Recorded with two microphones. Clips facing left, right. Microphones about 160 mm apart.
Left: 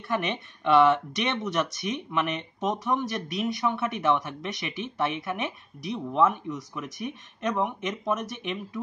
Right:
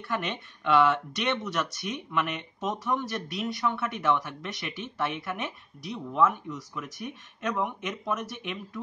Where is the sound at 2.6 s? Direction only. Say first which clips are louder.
Left 3 dB; 15° left (ahead or behind).